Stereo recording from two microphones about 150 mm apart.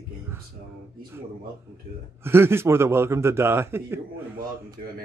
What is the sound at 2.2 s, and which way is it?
A man's voice, 15° right (ahead or behind).